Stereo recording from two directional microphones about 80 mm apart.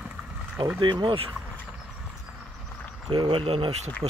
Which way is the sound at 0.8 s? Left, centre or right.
Right.